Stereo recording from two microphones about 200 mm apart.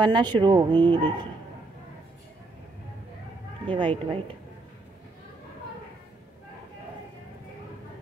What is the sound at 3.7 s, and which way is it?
Speech, 25° right (ahead or behind).